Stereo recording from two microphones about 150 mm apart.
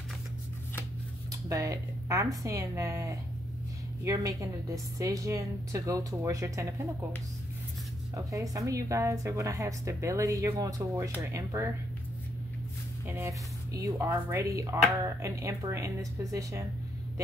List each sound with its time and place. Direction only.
1.3 s speech: 20° right (ahead or behind)
8.3 s speech: 20° right (ahead or behind)
13.0 s speech: 15° right (ahead or behind)